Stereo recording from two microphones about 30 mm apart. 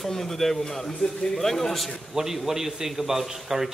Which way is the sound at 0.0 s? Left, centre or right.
Centre.